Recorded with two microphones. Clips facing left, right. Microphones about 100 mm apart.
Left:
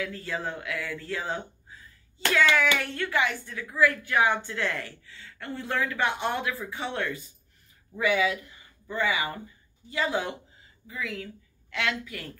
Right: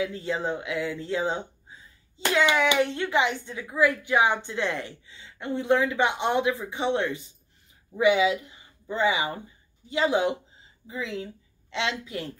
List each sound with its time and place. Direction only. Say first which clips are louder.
0.0 s a woman's voice: right 4 dB; 20° right (ahead or behind)